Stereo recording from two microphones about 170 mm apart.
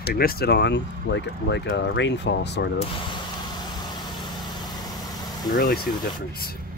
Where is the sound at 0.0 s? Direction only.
65° left (ahead or behind); by 2.7 s 85° left.